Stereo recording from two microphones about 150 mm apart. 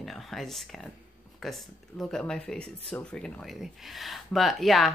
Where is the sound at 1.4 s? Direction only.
Centre (ahead or behind).